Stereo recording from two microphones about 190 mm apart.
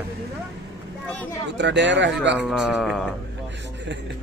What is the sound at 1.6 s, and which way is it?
Speech, 70° right (ahead or behind).